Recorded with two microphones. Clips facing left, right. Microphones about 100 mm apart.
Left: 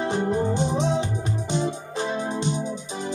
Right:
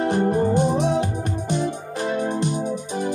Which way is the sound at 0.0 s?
50° right (ahead or behind).